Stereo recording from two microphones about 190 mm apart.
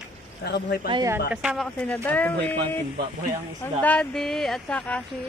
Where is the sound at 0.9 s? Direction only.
20° right (ahead or behind).